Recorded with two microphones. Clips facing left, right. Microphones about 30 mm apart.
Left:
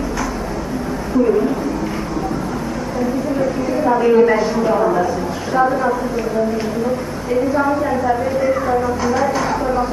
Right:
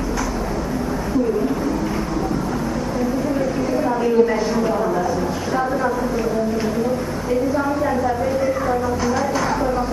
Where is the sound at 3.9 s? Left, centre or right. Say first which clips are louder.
Left 6 dB; left.